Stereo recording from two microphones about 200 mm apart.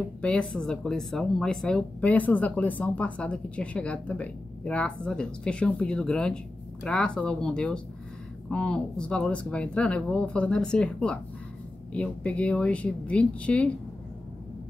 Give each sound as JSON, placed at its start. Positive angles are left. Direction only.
{"t": 0.2, "sound": "speech", "side_deg": 5}